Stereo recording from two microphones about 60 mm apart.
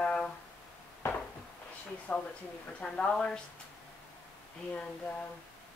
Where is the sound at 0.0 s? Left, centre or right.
Centre.